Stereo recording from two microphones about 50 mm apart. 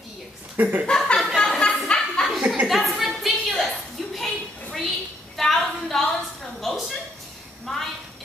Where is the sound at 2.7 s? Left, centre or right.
Centre.